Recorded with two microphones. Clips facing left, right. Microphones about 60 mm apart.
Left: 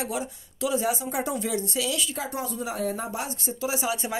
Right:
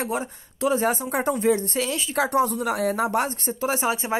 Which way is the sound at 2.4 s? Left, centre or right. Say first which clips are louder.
Right 6 dB; right.